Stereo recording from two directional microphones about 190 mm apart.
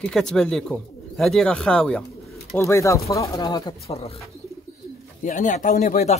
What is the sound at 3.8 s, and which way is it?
Speech, 30° left (ahead or behind).